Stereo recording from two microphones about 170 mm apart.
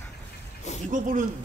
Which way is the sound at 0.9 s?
50° right (ahead or behind).